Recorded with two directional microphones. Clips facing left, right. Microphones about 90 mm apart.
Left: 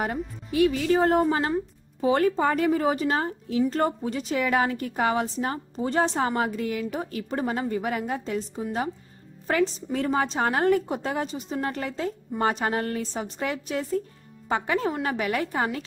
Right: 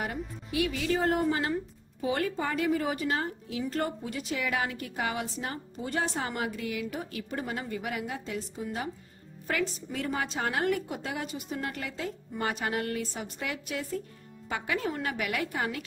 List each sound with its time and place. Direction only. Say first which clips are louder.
0.0 s a woman's voice: left 6 dB; 45° left (ahead or behind)
1.5 s a sound: left 5 dB; 30° left (ahead or behind)
2.1 s a woman's voice: left 8 dB; 45° left (ahead or behind)